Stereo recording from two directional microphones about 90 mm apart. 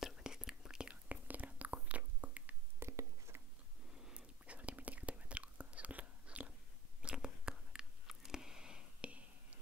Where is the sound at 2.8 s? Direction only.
30° right (ahead or behind).